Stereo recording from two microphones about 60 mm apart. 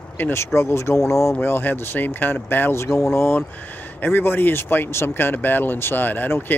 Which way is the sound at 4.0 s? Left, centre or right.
Left.